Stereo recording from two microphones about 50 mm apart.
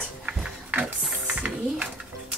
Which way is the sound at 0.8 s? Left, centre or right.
Right.